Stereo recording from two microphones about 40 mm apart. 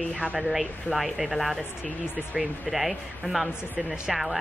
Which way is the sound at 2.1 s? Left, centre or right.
Right.